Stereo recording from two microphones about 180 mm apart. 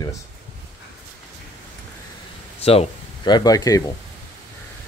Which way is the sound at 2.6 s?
30° left (ahead or behind).